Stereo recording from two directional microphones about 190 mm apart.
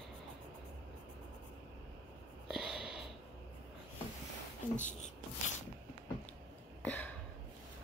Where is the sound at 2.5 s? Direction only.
Centre (ahead or behind).